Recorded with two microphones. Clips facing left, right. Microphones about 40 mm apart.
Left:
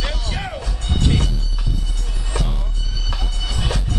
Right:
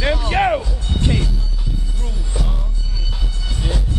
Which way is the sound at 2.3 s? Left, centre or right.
Left.